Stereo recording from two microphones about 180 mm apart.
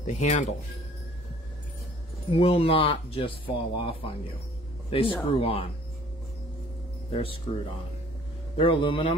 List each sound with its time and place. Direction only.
0.0 s speech: 40° left (ahead or behind)
2.3 s speech: 30° left (ahead or behind)
7.1 s speech: 30° left (ahead or behind)
8.5 s a man's voice: 30° left (ahead or behind)